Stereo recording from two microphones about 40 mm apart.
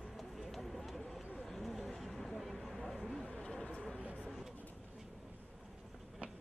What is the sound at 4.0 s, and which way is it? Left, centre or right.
Bird, right.